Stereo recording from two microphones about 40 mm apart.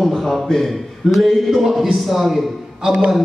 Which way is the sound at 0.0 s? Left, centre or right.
Centre.